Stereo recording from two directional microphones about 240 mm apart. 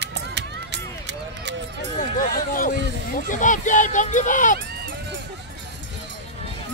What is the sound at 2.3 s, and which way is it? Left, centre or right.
Speech, left.